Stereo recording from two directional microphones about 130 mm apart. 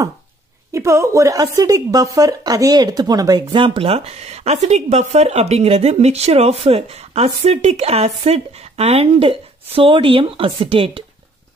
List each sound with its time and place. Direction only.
0.7 s a woman's voice: 20° right (ahead or behind); by 11.1 s 45° right (ahead or behind)